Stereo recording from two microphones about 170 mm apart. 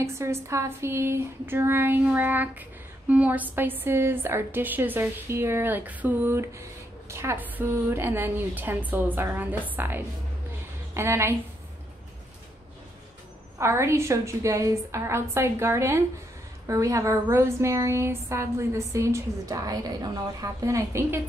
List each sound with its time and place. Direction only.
0.0 s a woman's voice: 15° right (ahead or behind)
13.6 s a woman's voice: 15° right (ahead or behind)